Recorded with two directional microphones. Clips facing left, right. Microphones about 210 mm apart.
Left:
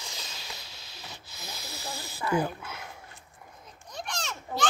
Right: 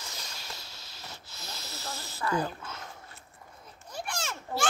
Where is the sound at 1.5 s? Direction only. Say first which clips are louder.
Left 1 dB; 15° left (ahead or behind).